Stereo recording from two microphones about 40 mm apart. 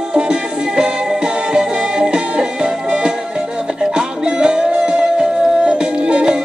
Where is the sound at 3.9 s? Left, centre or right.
Right.